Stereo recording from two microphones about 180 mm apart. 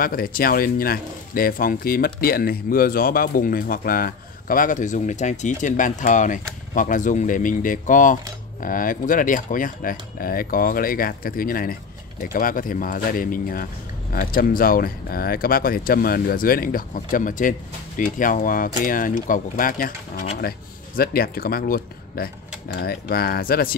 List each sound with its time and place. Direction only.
0.0 s speech: 55° left (ahead or behind)